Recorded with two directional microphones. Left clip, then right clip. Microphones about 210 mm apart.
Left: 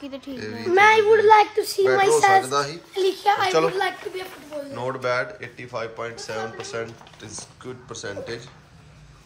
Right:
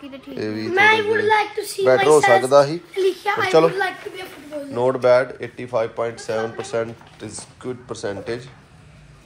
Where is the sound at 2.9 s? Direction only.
60° left (ahead or behind).